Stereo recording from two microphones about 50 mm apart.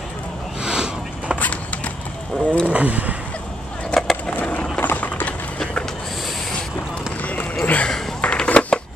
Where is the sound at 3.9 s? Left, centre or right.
Centre.